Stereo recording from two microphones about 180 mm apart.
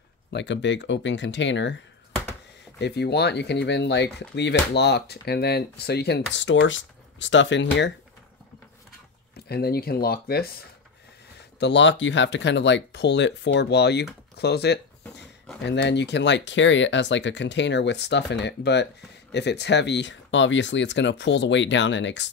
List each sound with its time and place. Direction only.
0.3 s speech: 80° left
2.8 s speech: 70° left (ahead or behind)
6.3 s speech: 90° left
9.5 s speech: 60° left (ahead or behind)
11.3 s speech: 80° left
14.4 s a sound: 65° left (ahead or behind)
15.6 s speech: 75° left (ahead or behind)